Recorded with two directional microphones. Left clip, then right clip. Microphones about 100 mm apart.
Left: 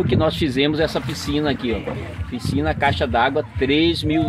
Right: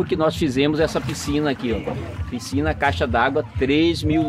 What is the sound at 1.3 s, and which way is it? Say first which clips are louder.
Speech: left 1 dB; 20° left (ahead or behind).